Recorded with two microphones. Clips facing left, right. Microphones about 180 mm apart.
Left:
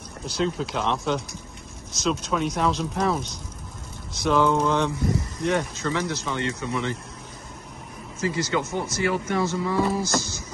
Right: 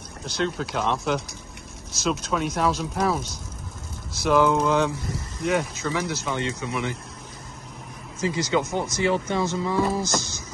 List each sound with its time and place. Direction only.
0.4 s speech: centre (ahead or behind)
8.2 s speech: 15° right (ahead or behind)